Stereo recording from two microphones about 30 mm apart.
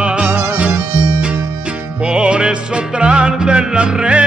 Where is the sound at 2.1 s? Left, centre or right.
Right.